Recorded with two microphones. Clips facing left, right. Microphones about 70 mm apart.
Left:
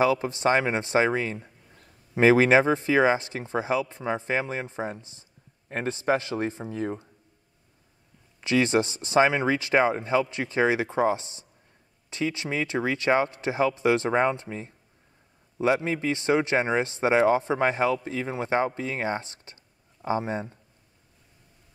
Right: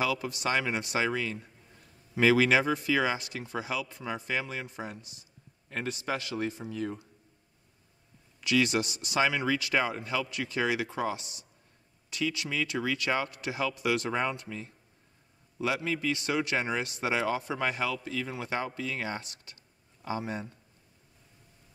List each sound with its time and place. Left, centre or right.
0.0 s a man's voice: left
8.4 s a man's voice: left